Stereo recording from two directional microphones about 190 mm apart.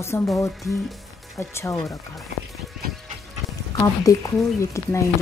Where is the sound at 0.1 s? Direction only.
10° left (ahead or behind).